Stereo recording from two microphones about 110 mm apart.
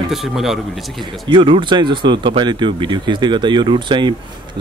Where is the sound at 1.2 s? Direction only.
45° right (ahead or behind).